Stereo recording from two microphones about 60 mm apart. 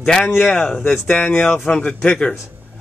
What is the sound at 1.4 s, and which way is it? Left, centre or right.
Speech, left.